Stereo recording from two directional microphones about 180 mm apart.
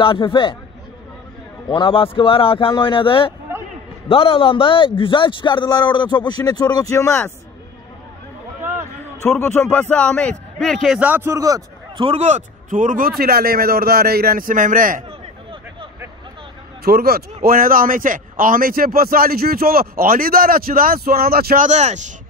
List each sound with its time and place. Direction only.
0.0 s a man's voice: 30° left (ahead or behind)
1.7 s a man's voice: 30° left (ahead or behind)
9.2 s a man's voice: 15° left (ahead or behind); by 12.1 s 20° right (ahead or behind)
12.1 s a man's voice: 40° right (ahead or behind)
13.2 s a man's voice: 55° right (ahead or behind)
16.8 s a man's voice: 60° right (ahead or behind)
21.6 s speech: 40° right (ahead or behind)